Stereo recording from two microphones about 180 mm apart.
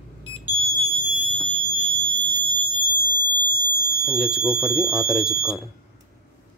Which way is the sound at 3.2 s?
25° right (ahead or behind).